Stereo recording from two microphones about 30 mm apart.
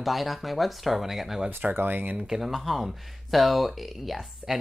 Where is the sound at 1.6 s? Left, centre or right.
Right.